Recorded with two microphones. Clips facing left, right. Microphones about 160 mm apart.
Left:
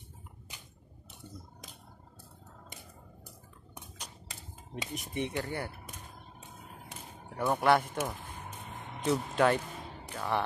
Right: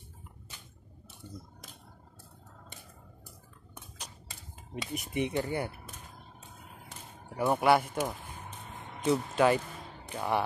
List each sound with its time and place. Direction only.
4.9 s speech: 10° right (ahead or behind)
7.2 s speech: 10° right (ahead or behind)
9.0 s speech: centre (ahead or behind)